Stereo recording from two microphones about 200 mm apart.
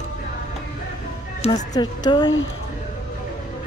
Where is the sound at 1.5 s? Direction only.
20° left (ahead or behind).